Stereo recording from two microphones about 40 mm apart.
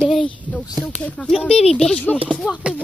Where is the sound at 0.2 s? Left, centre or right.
Left.